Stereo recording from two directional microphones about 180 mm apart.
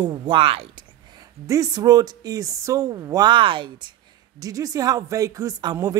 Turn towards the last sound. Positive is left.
turn(degrees=-20)  # may be behind; listen again after turning